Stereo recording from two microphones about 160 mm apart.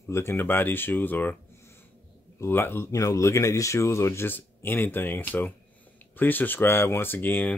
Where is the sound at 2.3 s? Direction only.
15° left (ahead or behind).